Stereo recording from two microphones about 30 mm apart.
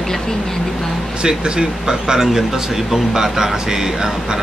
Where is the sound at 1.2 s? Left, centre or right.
Right.